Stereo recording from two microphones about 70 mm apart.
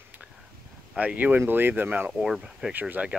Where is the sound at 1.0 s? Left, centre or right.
Right.